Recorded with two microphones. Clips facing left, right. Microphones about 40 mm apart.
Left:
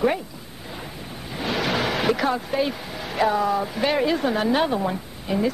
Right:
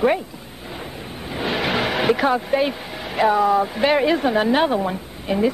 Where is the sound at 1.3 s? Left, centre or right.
Right.